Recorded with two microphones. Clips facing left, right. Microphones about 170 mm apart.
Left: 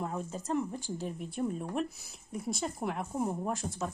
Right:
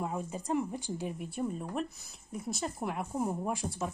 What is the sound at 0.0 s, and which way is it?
A woman's voice, 10° right (ahead or behind).